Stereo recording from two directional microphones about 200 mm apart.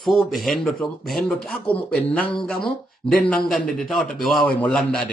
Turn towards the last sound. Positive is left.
turn(degrees=5)  # may be behind; listen again after turning